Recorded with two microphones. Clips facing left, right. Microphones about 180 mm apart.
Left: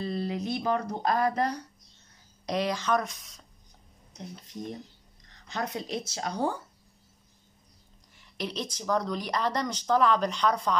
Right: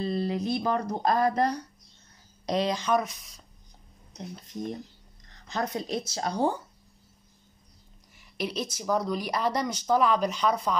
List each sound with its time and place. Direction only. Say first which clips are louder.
0.0 s speech: right 3 dB; 35° right (ahead or behind)
2.7 s speech: right 2 dB; 10° right (ahead or behind)
5.5 s speech: right 3 dB; 40° right (ahead or behind)
8.2 s a woman's voice: right 3 dB; 10° right (ahead or behind)